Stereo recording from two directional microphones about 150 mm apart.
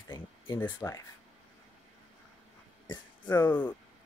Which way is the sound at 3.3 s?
15° left (ahead or behind).